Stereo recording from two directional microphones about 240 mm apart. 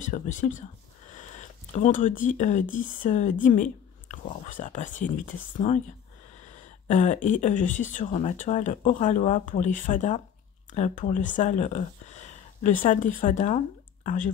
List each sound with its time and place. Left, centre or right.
0.0 s speech: left
1.1 s a sound: left
2.7 s speech: left